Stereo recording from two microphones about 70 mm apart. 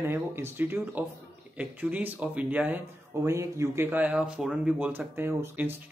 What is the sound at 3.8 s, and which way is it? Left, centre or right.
Speech, right.